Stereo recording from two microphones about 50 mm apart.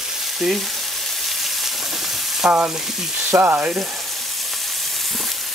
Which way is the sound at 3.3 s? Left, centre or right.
Right.